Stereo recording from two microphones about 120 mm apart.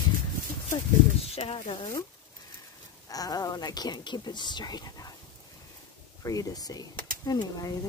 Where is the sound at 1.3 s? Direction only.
55° left (ahead or behind).